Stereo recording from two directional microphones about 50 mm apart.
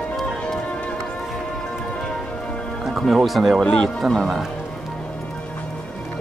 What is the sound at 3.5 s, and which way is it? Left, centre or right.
Speech, centre.